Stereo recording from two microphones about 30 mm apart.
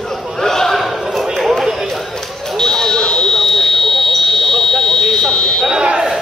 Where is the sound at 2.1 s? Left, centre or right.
Centre.